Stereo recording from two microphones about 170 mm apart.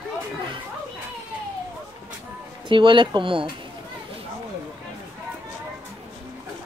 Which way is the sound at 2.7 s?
30° right (ahead or behind).